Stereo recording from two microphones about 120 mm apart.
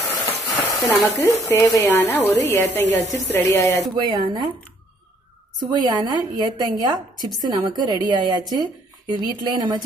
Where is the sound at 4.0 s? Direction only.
40° right (ahead or behind).